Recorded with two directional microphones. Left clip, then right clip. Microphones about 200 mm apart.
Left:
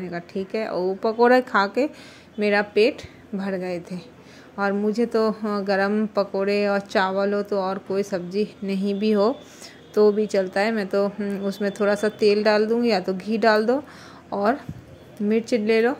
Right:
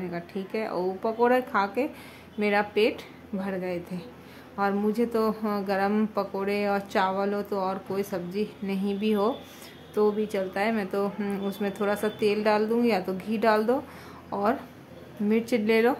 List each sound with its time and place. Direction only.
0.0 s a woman's voice: 15° left (ahead or behind)